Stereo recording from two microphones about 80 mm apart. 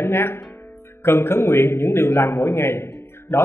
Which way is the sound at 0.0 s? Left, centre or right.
Left.